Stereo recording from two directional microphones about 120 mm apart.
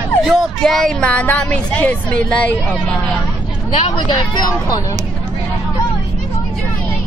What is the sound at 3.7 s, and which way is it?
Speech, 40° left (ahead or behind).